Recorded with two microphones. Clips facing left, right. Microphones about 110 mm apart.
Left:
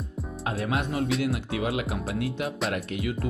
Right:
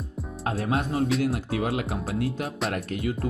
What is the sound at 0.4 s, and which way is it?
Music, 35° right (ahead or behind).